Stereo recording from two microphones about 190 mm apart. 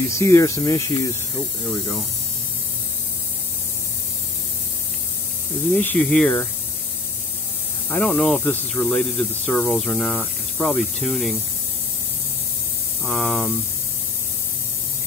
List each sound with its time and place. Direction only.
0.0 s speech: 15° left (ahead or behind)
5.8 s speech: 10° left (ahead or behind)
7.9 s speech: 5° left (ahead or behind)
13.0 s speech: centre (ahead or behind)